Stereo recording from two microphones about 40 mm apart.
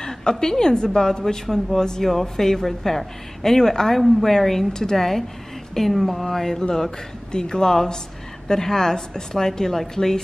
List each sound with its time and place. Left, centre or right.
0.0 s a woman's voice: centre